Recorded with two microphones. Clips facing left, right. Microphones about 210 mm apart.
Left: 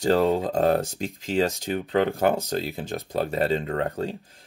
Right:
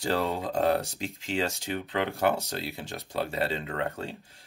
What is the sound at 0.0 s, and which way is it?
Speech, 45° left (ahead or behind).